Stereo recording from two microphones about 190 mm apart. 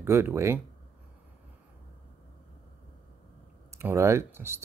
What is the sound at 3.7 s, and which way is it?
Speech, 15° right (ahead or behind).